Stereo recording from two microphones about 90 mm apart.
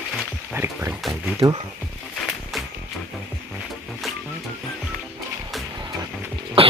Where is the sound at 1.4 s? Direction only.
45° right (ahead or behind).